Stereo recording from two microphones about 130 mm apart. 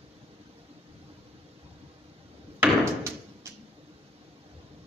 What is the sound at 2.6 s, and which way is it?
Door, 20° right (ahead or behind).